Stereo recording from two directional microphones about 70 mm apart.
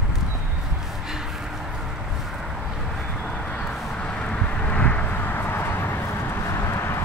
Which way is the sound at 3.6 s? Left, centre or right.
Centre.